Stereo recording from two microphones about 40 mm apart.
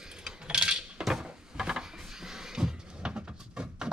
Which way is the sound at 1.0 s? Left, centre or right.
Centre.